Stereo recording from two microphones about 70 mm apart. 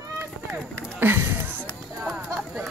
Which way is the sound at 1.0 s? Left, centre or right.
Right.